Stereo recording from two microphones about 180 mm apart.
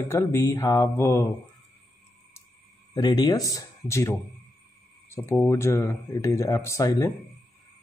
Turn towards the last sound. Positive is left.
turn(degrees=20)  # may be behind; listen again after turning